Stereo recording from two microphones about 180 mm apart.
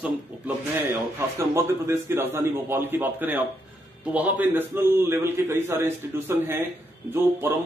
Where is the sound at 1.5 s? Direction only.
15° right (ahead or behind).